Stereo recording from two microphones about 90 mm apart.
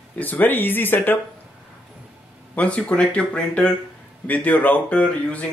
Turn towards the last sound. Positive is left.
turn(degrees=15)  # may be behind; listen again after turning